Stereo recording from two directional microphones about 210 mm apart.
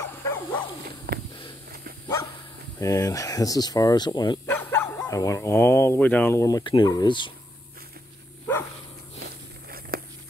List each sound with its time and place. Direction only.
0.2 s dog: 10° left (ahead or behind)
1.1 s a sound: 50° right (ahead or behind)
2.8 s speech: 15° left (ahead or behind)
4.5 s speech: 10° left (ahead or behind)
9.2 s biting: 45° right (ahead or behind)